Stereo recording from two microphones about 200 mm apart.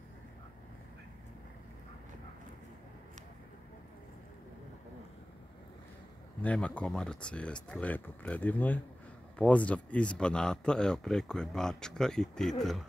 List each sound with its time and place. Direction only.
6.4 s speech: 5° left (ahead or behind)